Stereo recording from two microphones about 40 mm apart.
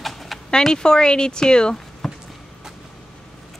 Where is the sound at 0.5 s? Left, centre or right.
Centre.